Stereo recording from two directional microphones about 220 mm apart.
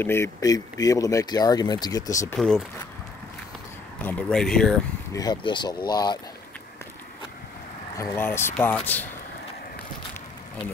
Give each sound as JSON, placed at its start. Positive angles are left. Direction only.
{"t": 0.0, "sound": "speech", "side_deg": 10}
{"t": 2.3, "sound": "speech", "side_deg": 5}
{"t": 4.0, "sound": "speech", "side_deg": 5}
{"t": 5.1, "sound": "speech", "side_deg": 20}
{"t": 8.0, "sound": "speech", "side_deg": 10}